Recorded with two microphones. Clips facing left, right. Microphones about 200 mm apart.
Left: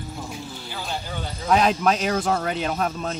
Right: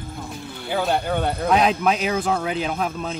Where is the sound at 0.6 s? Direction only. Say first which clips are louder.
Right 12 dB; 60° right (ahead or behind).